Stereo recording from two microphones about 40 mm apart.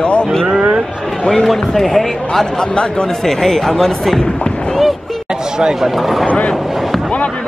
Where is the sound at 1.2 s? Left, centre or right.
Centre.